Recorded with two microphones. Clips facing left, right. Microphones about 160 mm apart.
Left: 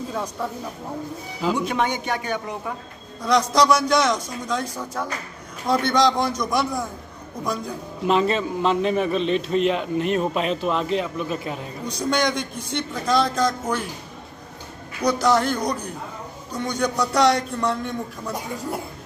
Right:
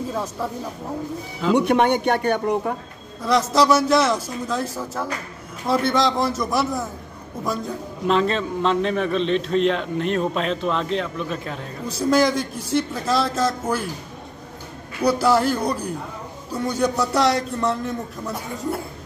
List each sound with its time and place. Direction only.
0.1 s a man's voice: 5° right (ahead or behind)
1.5 s speech: 65° right (ahead or behind)
3.2 s a man's voice: 5° right (ahead or behind)
11.8 s a man's voice: 5° right (ahead or behind)
15.0 s a man's voice: 5° right (ahead or behind)